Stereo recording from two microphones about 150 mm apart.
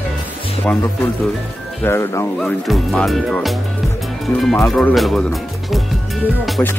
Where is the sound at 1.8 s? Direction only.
15° left (ahead or behind).